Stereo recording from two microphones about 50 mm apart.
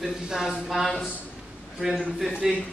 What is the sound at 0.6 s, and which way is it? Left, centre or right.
A man's voice, centre.